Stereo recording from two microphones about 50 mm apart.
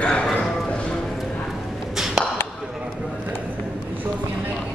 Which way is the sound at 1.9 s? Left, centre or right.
Centre.